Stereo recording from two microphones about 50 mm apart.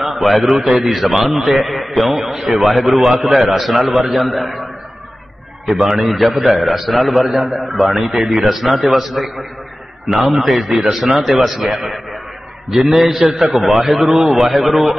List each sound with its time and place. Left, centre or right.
0.0 s a man's voice: centre
5.7 s a man's voice: centre